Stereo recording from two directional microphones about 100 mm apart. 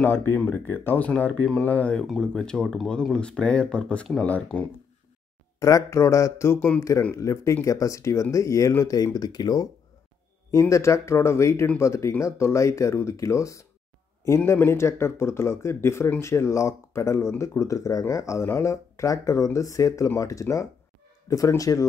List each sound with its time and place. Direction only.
0.0 s speech: 20° left (ahead or behind)
5.6 s speech: 35° left (ahead or behind)
10.5 s speech: 30° left (ahead or behind)